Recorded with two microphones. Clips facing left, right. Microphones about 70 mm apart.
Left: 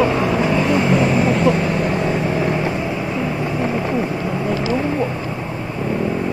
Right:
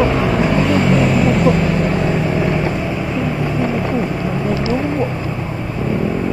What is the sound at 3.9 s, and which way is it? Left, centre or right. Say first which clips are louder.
Vehicle: right 1 dB; centre.